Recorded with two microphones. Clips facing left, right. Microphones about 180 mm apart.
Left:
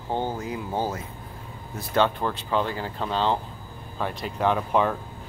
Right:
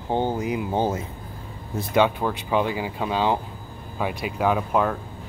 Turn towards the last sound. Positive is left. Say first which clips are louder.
# right 1 dB
turn(degrees=0)  # may be behind; listen again after turning